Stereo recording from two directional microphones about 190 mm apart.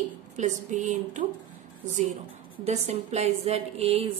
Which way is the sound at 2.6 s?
35° right (ahead or behind).